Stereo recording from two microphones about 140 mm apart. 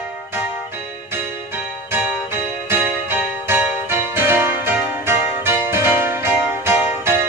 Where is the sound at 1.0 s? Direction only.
15° right (ahead or behind).